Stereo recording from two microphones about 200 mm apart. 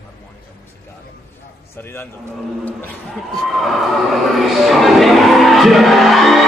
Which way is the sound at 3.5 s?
Centre (ahead or behind).